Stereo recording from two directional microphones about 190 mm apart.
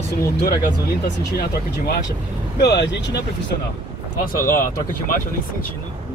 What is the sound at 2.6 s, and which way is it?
Speech, 60° left (ahead or behind).